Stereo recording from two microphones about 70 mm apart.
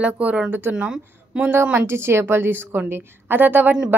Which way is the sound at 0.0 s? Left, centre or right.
Centre.